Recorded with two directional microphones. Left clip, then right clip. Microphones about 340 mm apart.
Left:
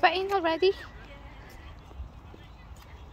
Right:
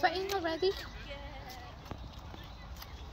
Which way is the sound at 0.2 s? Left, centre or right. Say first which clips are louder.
Left 7 dB; centre.